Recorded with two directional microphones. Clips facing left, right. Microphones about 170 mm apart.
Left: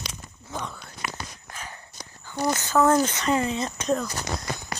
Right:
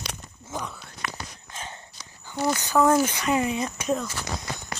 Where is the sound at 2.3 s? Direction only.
15° left (ahead or behind).